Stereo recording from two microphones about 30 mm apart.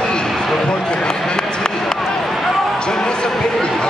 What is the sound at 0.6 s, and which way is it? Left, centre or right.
Basketball bounce, left.